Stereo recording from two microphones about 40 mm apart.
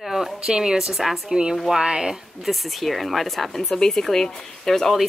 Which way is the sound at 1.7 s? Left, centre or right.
Centre.